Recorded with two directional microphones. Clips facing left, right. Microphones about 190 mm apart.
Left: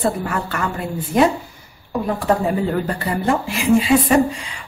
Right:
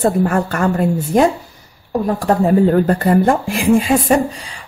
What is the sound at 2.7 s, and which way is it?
A woman's voice, 50° right (ahead or behind).